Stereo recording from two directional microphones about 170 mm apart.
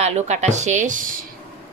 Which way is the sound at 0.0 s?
40° right (ahead or behind).